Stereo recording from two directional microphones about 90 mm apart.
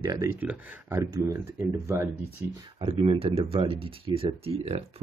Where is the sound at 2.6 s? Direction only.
75° right (ahead or behind).